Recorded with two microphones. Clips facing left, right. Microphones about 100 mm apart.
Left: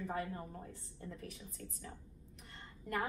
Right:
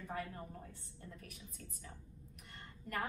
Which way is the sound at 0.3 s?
25° left (ahead or behind).